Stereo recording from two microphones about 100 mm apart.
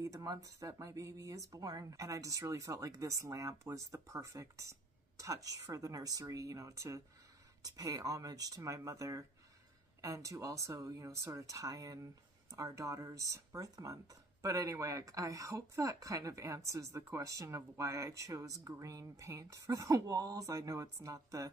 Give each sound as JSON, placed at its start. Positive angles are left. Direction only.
{"t": 0.0, "sound": "speech", "side_deg": -35}